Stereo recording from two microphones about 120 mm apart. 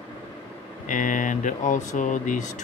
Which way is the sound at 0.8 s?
90° left.